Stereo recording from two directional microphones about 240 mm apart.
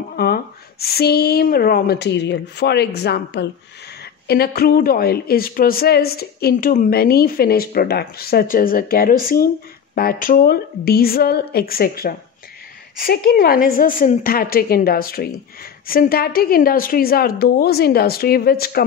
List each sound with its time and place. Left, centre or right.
0.1 s speech: left